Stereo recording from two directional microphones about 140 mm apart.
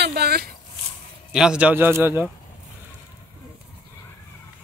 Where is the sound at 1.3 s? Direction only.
5° right (ahead or behind).